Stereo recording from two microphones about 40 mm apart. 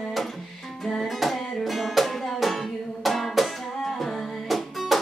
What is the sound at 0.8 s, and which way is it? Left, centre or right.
Music, centre.